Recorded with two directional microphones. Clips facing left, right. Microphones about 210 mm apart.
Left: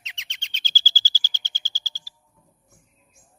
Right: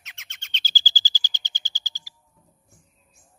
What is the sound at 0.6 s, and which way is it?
Bird, 15° right (ahead or behind).